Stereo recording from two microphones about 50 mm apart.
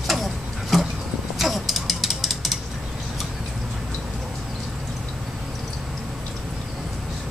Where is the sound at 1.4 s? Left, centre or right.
Centre.